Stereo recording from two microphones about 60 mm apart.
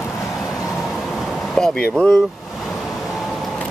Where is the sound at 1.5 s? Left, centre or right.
Centre.